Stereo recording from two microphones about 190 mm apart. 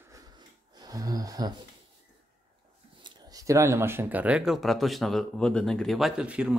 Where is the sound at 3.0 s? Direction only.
25° right (ahead or behind); by 6.5 s 5° right (ahead or behind).